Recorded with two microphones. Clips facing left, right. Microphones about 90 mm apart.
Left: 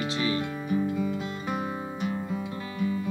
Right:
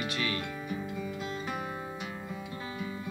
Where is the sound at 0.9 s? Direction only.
10° left (ahead or behind).